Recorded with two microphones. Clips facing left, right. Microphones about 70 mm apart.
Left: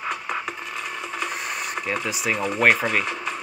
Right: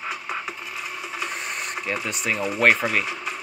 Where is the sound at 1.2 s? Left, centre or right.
Centre.